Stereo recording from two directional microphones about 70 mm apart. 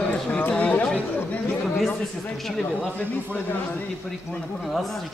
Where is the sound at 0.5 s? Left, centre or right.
Left.